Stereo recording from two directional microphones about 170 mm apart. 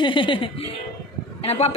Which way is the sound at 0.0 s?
30° left (ahead or behind).